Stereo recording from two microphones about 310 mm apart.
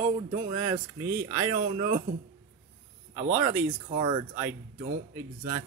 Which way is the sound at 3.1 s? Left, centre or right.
Centre.